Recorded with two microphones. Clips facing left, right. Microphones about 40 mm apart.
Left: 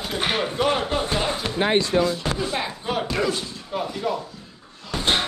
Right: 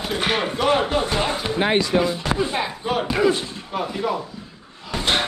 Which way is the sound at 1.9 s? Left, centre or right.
Centre.